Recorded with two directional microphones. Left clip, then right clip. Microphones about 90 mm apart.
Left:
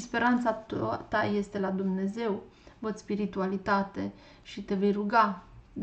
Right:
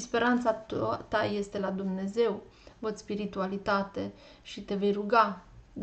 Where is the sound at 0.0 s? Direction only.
30° right (ahead or behind).